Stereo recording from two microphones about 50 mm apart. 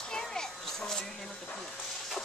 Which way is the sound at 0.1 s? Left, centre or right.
Centre.